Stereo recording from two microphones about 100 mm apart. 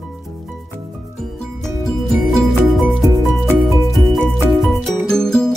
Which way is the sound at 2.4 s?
Centre (ahead or behind).